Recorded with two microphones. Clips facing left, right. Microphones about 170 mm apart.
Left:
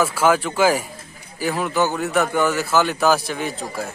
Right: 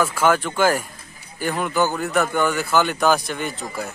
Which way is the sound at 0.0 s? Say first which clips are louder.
Left 1 dB; 5° left (ahead or behind).